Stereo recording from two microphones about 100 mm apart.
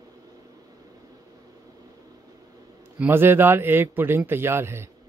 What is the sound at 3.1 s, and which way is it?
A man's voice, 20° right (ahead or behind).